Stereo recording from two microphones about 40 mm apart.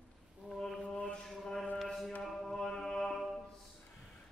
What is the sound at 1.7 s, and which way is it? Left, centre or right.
Mantra, centre.